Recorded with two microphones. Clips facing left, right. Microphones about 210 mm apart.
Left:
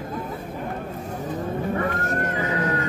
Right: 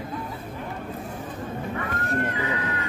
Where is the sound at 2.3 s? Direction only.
45° left (ahead or behind).